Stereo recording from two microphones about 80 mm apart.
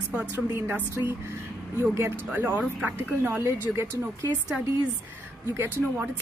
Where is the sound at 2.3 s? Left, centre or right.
Right.